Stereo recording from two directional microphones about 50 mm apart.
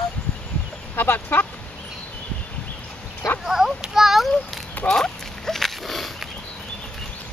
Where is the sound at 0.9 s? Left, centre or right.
Left.